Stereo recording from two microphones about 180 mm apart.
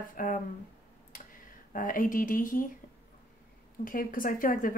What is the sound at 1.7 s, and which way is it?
Speech, 50° left (ahead or behind).